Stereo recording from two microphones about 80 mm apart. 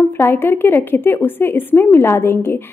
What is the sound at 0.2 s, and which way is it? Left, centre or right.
Speech, left.